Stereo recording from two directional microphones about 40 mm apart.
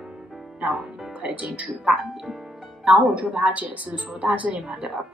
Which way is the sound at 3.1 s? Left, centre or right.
Right.